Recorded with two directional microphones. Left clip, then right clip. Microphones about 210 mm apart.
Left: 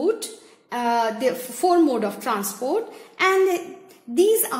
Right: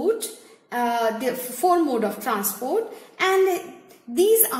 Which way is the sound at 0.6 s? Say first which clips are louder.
Left 1 dB; 30° left (ahead or behind).